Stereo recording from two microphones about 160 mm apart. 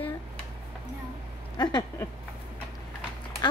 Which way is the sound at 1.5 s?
25° left (ahead or behind).